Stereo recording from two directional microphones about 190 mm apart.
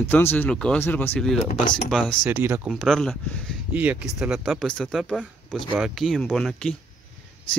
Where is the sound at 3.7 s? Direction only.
5° right (ahead or behind).